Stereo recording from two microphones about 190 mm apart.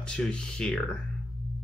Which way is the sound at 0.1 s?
5° left (ahead or behind).